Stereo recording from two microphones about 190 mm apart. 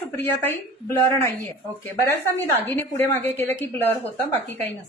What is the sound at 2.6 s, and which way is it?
A woman's voice, 10° left (ahead or behind).